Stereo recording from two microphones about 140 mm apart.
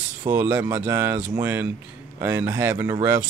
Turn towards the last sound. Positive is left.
turn(degrees=-15)  # may be behind; listen again after turning